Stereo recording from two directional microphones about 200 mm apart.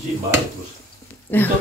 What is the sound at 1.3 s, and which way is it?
Speech, 10° left (ahead or behind).